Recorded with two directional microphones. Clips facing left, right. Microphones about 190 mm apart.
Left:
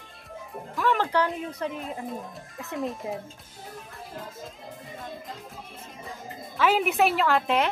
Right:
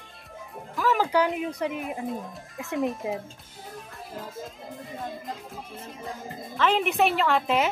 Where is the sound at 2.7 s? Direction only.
Centre (ahead or behind).